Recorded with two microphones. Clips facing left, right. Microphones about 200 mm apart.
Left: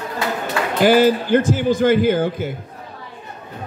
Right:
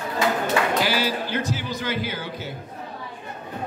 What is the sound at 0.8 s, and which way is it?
A man's voice, 50° left (ahead or behind).